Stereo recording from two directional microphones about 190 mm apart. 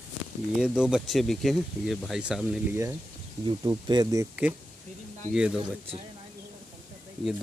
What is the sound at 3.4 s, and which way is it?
Speech, 20° right (ahead or behind).